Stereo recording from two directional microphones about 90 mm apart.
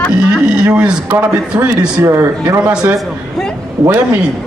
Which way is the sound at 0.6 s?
10° right (ahead or behind).